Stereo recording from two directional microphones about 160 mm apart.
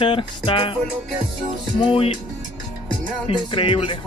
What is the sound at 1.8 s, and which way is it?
Speech, 35° left (ahead or behind).